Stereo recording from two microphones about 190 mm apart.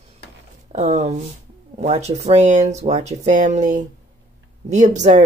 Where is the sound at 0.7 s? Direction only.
35° right (ahead or behind).